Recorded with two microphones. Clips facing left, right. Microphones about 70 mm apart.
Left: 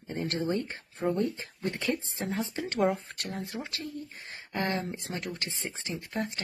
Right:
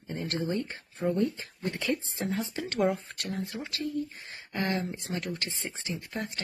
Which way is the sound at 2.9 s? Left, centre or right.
Centre.